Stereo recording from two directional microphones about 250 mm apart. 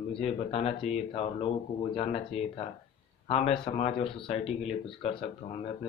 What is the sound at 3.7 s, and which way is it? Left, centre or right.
Speech, left.